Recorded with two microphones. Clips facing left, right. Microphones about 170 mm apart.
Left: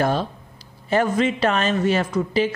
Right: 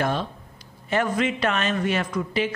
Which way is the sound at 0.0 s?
35° left (ahead or behind).